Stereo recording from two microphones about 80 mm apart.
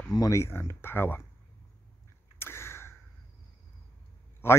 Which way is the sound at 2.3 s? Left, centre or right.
Left.